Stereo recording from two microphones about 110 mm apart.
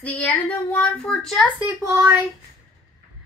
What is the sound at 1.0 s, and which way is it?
Speech, 5° left (ahead or behind).